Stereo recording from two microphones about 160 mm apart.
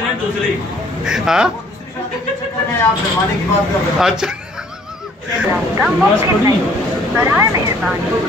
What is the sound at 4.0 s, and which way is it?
Speech, 5° right (ahead or behind).